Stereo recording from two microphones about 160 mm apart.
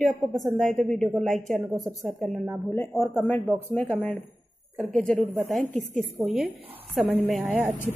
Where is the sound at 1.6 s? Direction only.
20° right (ahead or behind).